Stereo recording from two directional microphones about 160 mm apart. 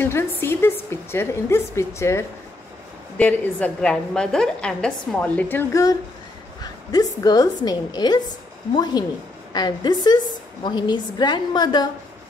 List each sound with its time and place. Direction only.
0.0 s a woman's voice: 15° left (ahead or behind)